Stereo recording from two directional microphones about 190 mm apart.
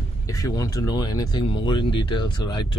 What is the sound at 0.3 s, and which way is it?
Speech, 20° left (ahead or behind).